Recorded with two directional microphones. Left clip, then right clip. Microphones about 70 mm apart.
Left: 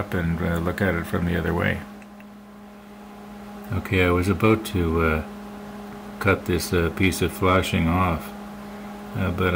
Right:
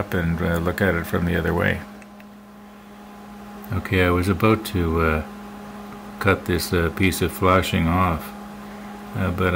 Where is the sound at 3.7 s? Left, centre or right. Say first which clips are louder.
Right 1 dB; centre.